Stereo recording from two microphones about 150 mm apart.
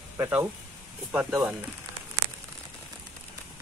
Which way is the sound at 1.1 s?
5° right (ahead or behind).